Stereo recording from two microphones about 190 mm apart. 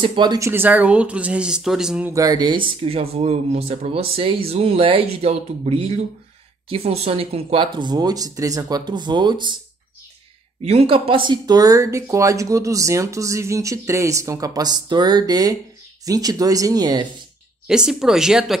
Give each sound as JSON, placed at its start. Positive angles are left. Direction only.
{"t": 0.0, "sound": "speech", "side_deg": -25}
{"t": 2.1, "sound": "speech", "side_deg": -20}
{"t": 10.6, "sound": "speech", "side_deg": -30}
{"t": 17.6, "sound": "speech", "side_deg": -5}